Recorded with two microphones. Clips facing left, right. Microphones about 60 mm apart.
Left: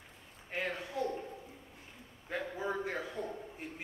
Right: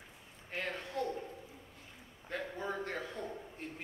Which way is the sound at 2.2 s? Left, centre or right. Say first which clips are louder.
Left 2 dB; centre.